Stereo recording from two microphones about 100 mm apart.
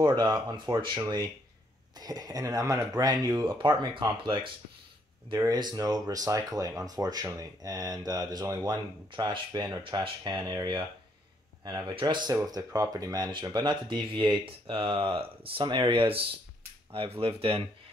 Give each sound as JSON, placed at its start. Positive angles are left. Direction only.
{"t": 0.2, "sound": "speech", "side_deg": -45}
{"t": 5.5, "sound": "a man's voice", "side_deg": -40}
{"t": 11.9, "sound": "speech", "side_deg": -55}
{"t": 12.4, "sound": "speech", "side_deg": -40}
{"t": 15.6, "sound": "speech", "side_deg": -50}
{"t": 17.2, "sound": "speech", "side_deg": -65}